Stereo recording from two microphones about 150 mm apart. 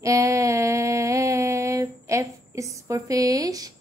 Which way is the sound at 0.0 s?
20° right (ahead or behind).